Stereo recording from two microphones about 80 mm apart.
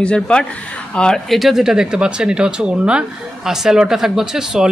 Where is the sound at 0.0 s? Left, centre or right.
Centre.